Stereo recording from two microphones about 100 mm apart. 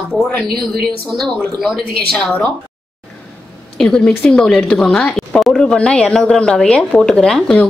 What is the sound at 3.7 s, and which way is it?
A woman's voice, 5° left (ahead or behind).